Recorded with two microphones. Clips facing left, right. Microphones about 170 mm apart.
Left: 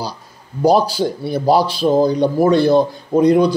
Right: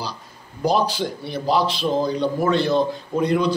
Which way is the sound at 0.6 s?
40° left (ahead or behind).